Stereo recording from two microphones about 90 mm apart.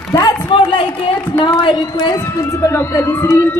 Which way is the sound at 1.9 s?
45° left (ahead or behind).